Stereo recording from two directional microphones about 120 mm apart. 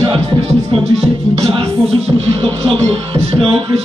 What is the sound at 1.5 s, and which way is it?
Music, 45° right (ahead or behind).